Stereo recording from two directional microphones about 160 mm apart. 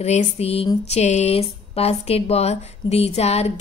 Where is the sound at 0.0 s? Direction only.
45° left (ahead or behind).